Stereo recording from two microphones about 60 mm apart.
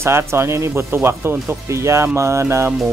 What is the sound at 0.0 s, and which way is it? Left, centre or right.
Speech, right.